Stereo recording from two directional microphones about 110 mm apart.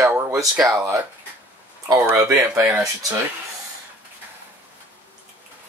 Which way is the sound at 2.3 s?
25° right (ahead or behind).